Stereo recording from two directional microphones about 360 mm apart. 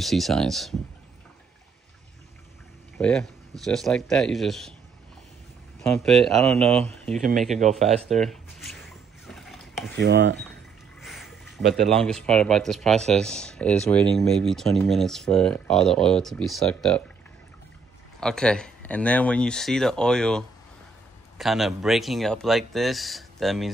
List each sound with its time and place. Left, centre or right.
0.0 s speech: centre
3.0 s speech: centre
5.8 s speech: centre
9.2 s mechanisms: centre
9.9 s speech: right
11.0 s speech: centre
18.2 s speech: centre